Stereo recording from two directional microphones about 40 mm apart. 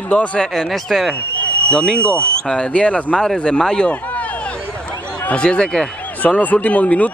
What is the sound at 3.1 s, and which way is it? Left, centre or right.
Speech, centre.